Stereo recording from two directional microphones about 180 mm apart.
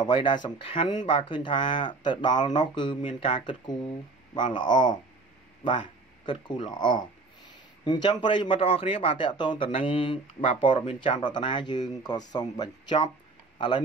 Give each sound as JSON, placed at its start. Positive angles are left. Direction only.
{"t": 0.0, "sound": "speech", "side_deg": 25}
{"t": 6.2, "sound": "speech", "side_deg": 25}